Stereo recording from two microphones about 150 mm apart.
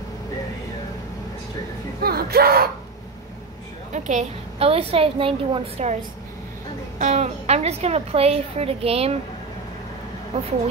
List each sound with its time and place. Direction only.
2.0 s a sound: 90° right
3.9 s a woman's voice: 50° right (ahead or behind)
7.0 s a woman's voice: 50° right (ahead or behind)